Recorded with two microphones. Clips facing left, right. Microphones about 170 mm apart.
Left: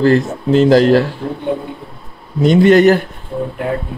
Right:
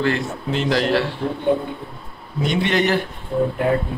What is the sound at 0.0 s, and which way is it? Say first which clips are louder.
Speech: left 9 dB; 40° left (ahead or behind).